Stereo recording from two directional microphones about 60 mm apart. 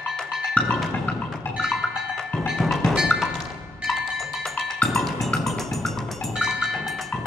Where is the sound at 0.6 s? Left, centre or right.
Centre.